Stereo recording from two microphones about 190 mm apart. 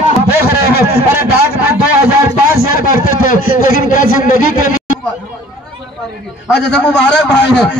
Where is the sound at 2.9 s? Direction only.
45° left (ahead or behind).